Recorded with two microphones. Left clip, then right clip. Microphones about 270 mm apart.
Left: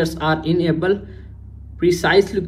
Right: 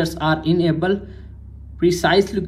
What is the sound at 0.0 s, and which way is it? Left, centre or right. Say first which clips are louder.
Speech: left 1 dB; centre.